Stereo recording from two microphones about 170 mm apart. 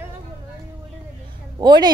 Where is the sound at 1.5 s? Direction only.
25° right (ahead or behind).